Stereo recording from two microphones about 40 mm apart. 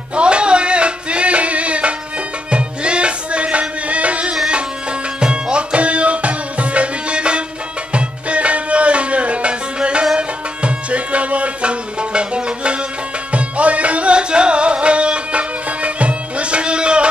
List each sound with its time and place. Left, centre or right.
0.1 s music: right